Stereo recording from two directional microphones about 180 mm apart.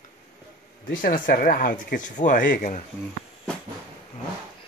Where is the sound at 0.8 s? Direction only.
50° left (ahead or behind).